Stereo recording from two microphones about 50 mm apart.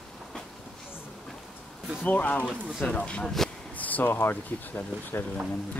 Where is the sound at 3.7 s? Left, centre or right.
Left.